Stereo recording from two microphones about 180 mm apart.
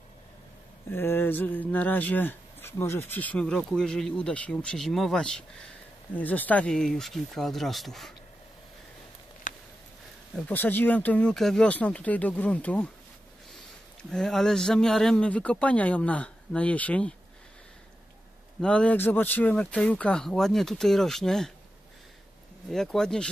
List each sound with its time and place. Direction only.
0.9 s speech: 10° left (ahead or behind)
9.5 s a sound: 45° left (ahead or behind)
10.3 s speech: 10° left (ahead or behind)
14.1 s speech: 5° left (ahead or behind)
18.6 s speech: 5° left (ahead or behind)
22.7 s speech: 5° left (ahead or behind)